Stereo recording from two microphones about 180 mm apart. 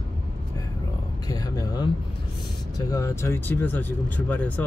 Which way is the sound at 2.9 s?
15° left (ahead or behind).